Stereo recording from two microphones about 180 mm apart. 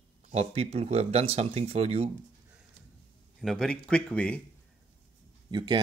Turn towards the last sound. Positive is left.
turn(degrees=-25)  # may be behind; listen again after turning